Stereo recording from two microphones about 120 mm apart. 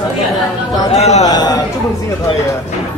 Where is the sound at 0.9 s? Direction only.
65° left (ahead or behind).